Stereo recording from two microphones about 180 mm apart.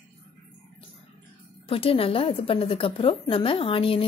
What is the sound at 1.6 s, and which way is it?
A woman's voice, 30° left (ahead or behind).